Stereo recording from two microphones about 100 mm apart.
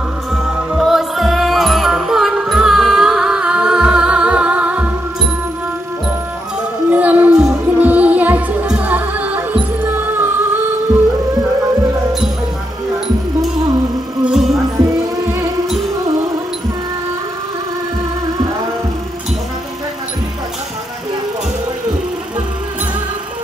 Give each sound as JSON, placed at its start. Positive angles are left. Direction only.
{"t": 0.3, "sound": "music", "side_deg": 0}
{"t": 6.9, "sound": "music", "side_deg": -15}
{"t": 14.2, "sound": "music", "side_deg": 0}